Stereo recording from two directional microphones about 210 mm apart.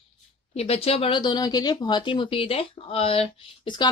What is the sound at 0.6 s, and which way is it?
Speech, 30° left (ahead or behind).